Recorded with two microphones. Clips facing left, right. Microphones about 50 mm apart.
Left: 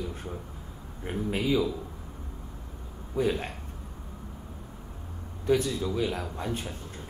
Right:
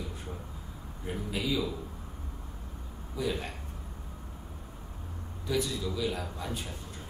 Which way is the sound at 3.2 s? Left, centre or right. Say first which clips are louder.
Left 5 dB; left.